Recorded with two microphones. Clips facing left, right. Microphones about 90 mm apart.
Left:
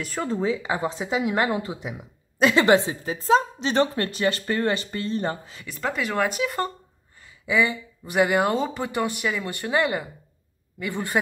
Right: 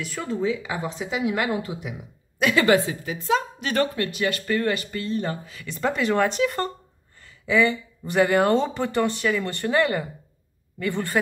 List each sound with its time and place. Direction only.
0.0 s a woman's voice: 35° left (ahead or behind)
4.0 s speech: 35° left (ahead or behind)
5.7 s speech: centre (ahead or behind)